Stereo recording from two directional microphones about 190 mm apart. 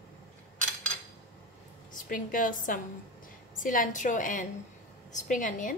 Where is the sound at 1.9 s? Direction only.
45° left (ahead or behind).